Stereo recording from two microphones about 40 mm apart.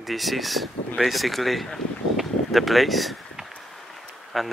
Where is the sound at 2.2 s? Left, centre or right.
Centre.